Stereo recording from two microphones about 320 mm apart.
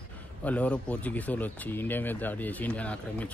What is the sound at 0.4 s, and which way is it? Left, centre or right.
Speech, centre.